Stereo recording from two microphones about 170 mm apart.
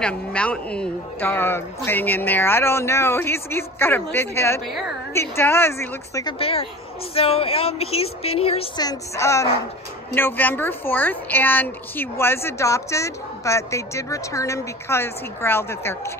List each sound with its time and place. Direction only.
0.0 s a woman's voice: 5° left (ahead or behind)
6.4 s speech: 35° left (ahead or behind)
8.8 s a woman's voice: 15° left (ahead or behind)